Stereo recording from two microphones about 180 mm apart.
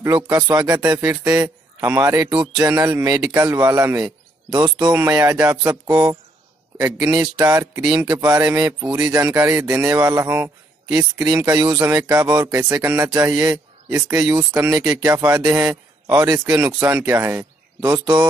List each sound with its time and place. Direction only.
0.0 s speech: 20° right (ahead or behind)